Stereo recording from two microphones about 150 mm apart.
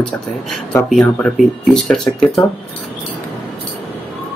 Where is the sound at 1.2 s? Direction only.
5° left (ahead or behind).